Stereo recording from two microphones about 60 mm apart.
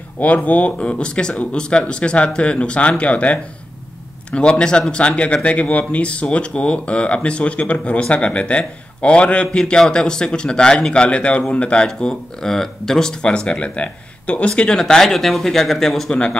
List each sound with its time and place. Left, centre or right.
0.2 s speech: left; by 16.1 s centre
16.1 s speech: centre